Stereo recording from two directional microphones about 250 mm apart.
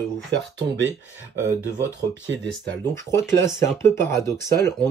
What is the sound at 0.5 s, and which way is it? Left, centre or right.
Speech, right.